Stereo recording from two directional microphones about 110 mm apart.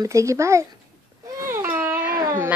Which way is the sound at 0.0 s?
30° right (ahead or behind).